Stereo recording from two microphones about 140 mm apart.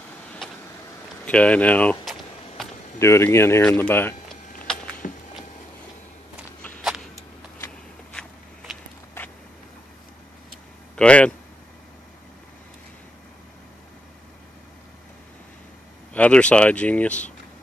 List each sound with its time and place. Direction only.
1.2 s speech: 10° left (ahead or behind)
2.0 s a sound: centre (ahead or behind)
3.0 s speech: 20° left (ahead or behind)
4.6 s a sound: 10° left (ahead or behind)
6.8 s vehicle: 5° right (ahead or behind)
8.1 s a sound: 5° left (ahead or behind)
9.2 s vehicle: 20° left (ahead or behind)
11.0 s speech: 10° left (ahead or behind)
16.1 s speech: 10° left (ahead or behind)